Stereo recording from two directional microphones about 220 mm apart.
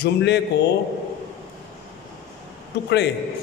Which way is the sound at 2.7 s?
50° left (ahead or behind).